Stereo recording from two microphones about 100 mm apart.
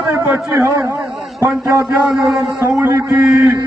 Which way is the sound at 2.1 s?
5° right (ahead or behind).